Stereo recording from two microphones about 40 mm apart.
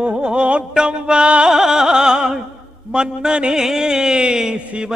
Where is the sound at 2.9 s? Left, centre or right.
Right.